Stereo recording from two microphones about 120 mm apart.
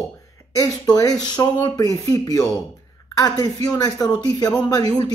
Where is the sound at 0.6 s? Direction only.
30° left (ahead or behind).